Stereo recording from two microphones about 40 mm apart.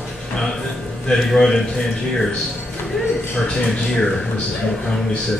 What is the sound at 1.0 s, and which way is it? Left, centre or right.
Speech, centre.